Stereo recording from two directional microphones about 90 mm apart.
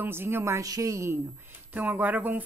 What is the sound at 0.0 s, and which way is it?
Speech, 25° right (ahead or behind).